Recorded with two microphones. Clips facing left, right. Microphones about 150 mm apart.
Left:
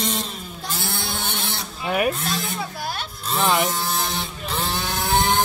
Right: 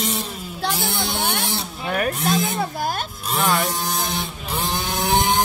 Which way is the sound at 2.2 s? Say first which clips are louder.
Right 6 dB; 45° right (ahead or behind).